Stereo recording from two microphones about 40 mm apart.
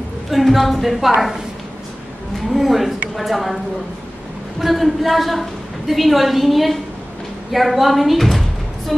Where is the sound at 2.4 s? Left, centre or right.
Centre.